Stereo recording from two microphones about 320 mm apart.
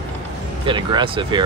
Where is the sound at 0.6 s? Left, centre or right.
Centre.